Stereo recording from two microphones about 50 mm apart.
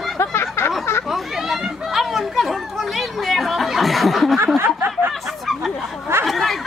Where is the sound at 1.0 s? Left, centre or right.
Centre.